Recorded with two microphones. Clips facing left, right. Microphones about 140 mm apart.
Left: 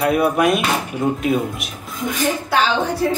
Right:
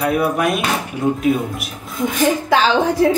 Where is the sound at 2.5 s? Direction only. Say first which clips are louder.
Right 2 dB; 90° right.